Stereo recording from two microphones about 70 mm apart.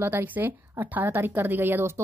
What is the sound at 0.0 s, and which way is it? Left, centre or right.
Speech, right.